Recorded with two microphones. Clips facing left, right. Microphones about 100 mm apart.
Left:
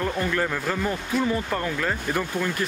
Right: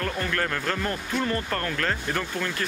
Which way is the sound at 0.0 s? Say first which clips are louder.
Left 3 dB; 15° left (ahead or behind).